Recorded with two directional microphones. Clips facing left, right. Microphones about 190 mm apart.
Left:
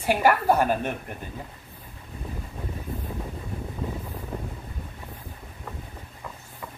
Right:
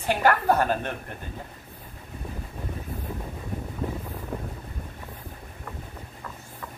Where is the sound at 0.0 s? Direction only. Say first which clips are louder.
Left 1 dB; 10° left (ahead or behind).